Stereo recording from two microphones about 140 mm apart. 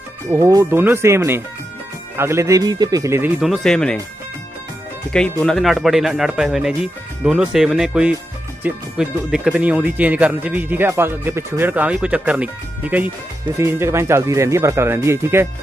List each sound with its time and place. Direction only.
0.3 s speech: 20° right (ahead or behind)
3.3 s speech: centre (ahead or behind)
5.4 s speech: 5° left (ahead or behind)
13.6 s speech: 20° right (ahead or behind)